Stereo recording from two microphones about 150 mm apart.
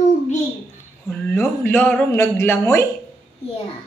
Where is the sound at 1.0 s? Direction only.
15° left (ahead or behind).